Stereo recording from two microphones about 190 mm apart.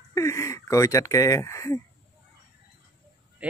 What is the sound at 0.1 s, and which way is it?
Speech, 15° left (ahead or behind).